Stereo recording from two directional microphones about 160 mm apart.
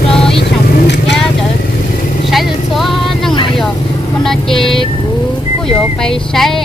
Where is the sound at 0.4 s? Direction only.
90° left.